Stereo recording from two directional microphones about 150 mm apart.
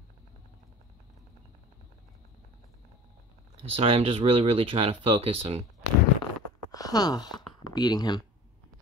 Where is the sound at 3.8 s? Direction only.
40° right (ahead or behind).